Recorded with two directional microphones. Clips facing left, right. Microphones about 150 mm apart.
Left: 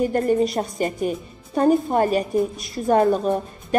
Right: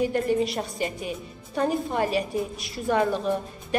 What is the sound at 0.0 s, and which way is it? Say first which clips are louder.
A woman's voice: left 4 dB; 45° left (ahead or behind).